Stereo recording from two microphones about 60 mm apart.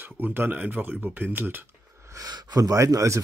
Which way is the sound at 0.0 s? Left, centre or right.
Right.